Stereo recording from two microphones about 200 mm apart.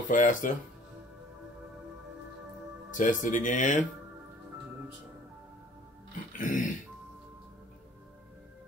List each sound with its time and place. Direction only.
0.1 s speech: 40° left (ahead or behind)
2.9 s speech: 40° left (ahead or behind)
6.3 s speech: 40° left (ahead or behind)